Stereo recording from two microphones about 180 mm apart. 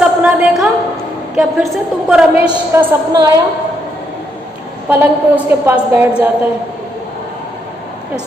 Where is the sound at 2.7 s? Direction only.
15° right (ahead or behind).